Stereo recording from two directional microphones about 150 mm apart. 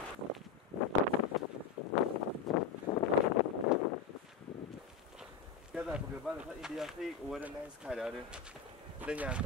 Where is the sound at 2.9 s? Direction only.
30° left (ahead or behind).